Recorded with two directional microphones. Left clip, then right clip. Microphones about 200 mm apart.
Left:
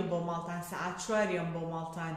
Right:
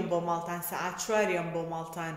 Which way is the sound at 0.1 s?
40° right (ahead or behind).